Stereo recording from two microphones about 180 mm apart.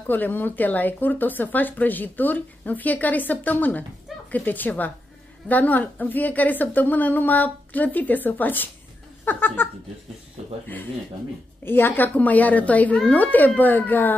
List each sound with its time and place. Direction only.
0.0 s speech: 10° left (ahead or behind)
9.2 s a sound: 10° left (ahead or behind)
11.6 s speech: 10° left (ahead or behind)